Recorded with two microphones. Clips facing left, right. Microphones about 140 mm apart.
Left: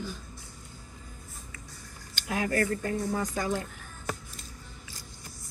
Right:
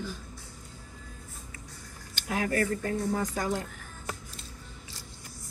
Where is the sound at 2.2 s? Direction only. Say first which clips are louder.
Even; 30° right (ahead or behind).